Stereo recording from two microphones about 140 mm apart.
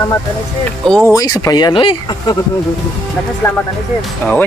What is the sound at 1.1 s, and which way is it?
Speech, 25° left (ahead or behind).